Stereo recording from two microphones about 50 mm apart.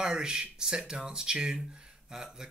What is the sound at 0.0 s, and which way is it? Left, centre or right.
Speech, centre.